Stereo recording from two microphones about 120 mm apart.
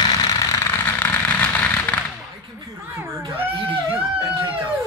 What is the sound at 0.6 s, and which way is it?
Fireworks, 15° left (ahead or behind).